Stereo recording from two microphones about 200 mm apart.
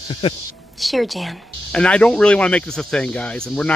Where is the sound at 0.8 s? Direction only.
Centre (ahead or behind).